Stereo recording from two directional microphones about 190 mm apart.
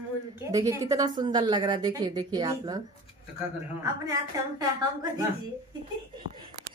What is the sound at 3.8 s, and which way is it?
A child's voice, 20° right (ahead or behind).